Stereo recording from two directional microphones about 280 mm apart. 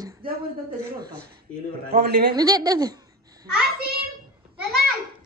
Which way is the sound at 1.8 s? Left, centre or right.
Right.